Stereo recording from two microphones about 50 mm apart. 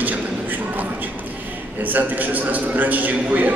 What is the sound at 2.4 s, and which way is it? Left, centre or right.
A man's voice, right.